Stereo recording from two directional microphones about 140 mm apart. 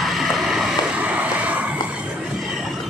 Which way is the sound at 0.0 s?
Centre (ahead or behind).